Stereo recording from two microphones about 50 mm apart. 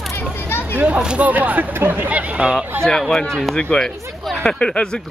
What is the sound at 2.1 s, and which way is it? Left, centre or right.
Speech, right.